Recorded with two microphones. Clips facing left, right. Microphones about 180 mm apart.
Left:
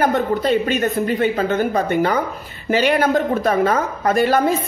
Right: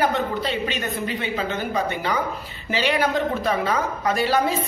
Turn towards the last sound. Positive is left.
turn(degrees=50)  # may be behind; listen again after turning